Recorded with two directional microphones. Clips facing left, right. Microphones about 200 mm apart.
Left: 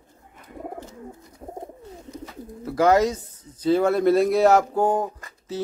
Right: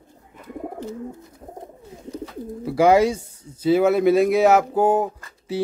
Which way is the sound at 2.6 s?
10° right (ahead or behind).